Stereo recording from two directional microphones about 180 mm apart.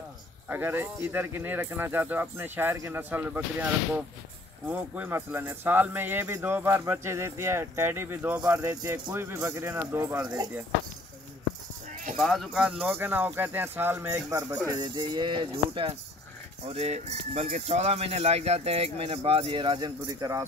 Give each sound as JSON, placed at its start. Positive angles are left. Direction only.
{"t": 0.5, "sound": "speech", "side_deg": -10}
{"t": 12.2, "sound": "speech", "side_deg": 0}